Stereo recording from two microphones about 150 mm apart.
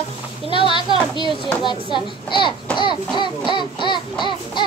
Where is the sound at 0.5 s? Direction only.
35° left (ahead or behind).